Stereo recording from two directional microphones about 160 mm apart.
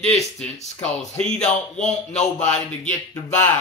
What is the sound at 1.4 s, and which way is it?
Speech, 45° left (ahead or behind).